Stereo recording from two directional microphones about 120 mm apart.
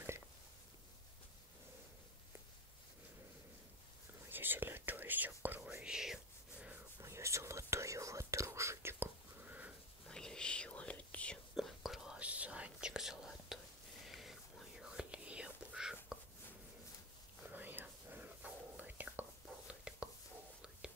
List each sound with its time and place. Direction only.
4.3 s whispering: 15° right (ahead or behind)
7.0 s whispering: 25° right (ahead or behind)
10.0 s whispering: 5° left (ahead or behind)
11.5 s whispering: centre (ahead or behind)
17.5 s whispering: 15° right (ahead or behind)